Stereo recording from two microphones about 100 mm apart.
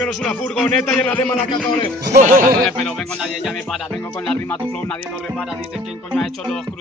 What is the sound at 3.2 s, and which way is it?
Music, 5° right (ahead or behind).